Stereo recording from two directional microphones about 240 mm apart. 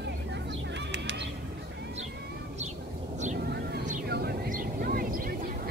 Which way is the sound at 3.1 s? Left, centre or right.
Right.